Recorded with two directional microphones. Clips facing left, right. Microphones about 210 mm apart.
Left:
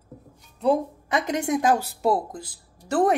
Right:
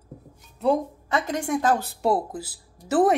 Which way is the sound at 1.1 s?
20° left (ahead or behind).